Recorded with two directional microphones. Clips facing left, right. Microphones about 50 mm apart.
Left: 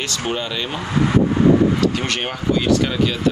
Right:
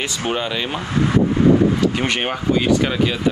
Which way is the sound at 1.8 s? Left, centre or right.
Centre.